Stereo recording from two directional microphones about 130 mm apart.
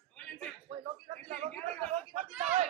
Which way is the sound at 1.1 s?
65° right (ahead or behind).